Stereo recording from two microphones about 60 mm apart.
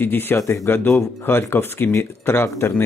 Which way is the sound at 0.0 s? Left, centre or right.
Left.